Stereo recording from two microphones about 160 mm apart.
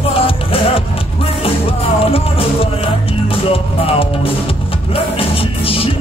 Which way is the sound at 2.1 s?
35° left (ahead or behind).